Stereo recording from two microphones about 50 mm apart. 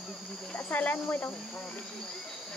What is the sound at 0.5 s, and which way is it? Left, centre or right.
Speech, left.